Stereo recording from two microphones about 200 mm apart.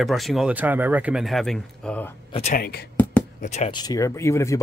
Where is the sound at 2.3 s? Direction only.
30° left (ahead or behind).